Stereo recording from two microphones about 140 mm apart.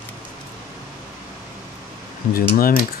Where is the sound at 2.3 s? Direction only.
90° left.